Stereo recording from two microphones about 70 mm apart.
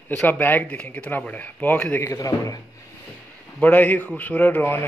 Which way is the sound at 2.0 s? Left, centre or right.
Left.